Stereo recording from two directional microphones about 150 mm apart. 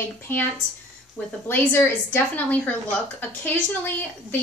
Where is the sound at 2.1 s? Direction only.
10° left (ahead or behind).